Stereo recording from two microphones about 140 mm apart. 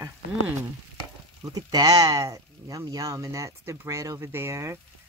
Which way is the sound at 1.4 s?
25° right (ahead or behind).